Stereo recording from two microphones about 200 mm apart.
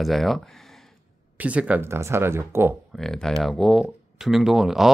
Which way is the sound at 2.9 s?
Centre (ahead or behind).